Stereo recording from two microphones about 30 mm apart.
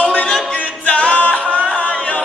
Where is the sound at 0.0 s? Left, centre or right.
Left.